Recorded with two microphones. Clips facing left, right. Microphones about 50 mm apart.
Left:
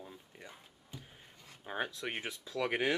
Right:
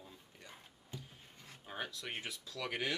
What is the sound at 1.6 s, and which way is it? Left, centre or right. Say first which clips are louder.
Speech: left 6 dB; left.